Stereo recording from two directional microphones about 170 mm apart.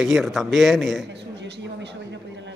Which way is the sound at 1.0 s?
90° right.